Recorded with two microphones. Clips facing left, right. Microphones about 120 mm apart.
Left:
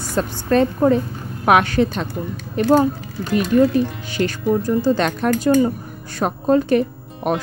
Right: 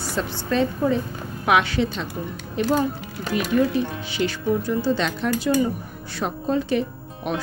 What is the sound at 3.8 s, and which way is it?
A woman's voice, 50° left (ahead or behind).